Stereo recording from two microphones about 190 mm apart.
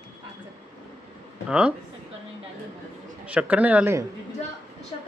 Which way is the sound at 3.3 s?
5° right (ahead or behind).